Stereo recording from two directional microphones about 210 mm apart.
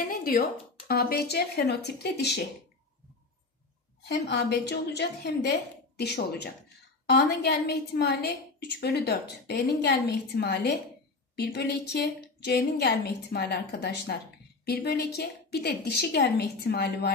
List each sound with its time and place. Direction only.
0.0 s a woman's voice: 45° left (ahead or behind)
4.1 s a woman's voice: 50° left (ahead or behind)